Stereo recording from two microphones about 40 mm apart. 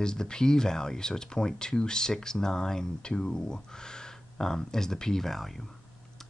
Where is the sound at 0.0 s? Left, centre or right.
Centre.